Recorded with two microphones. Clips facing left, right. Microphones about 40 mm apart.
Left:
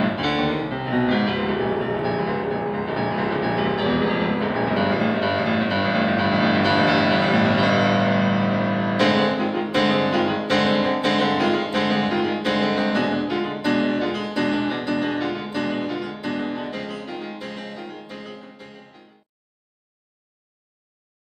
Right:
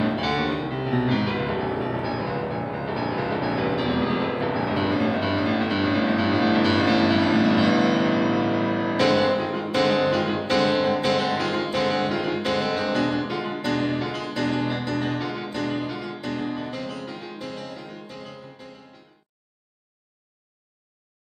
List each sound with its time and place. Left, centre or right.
0.0 s music: left
16.3 s music: left